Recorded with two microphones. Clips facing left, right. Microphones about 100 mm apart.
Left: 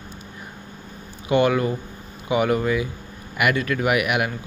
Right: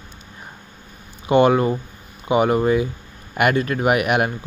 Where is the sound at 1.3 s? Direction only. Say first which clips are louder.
Right 4 dB; 30° right (ahead or behind).